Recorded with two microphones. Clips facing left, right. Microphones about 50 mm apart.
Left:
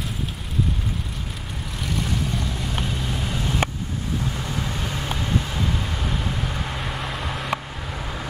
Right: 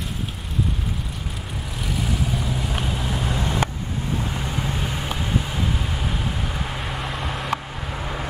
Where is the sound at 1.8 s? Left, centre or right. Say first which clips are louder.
Even; centre.